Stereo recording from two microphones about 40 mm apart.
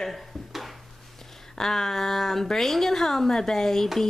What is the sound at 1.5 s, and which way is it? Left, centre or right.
A woman's voice, centre.